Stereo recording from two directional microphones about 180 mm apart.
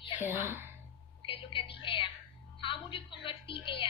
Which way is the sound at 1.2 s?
30° left (ahead or behind).